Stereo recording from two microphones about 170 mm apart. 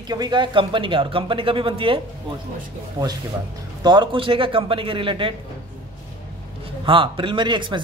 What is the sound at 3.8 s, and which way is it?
Speech, 25° right (ahead or behind).